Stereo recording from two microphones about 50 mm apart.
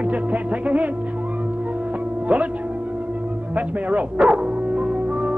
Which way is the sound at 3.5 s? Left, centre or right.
Right.